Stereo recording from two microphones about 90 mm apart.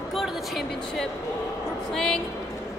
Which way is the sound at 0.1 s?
5° right (ahead or behind).